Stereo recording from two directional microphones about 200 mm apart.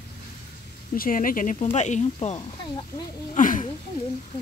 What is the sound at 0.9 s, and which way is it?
Speech, 45° left (ahead or behind).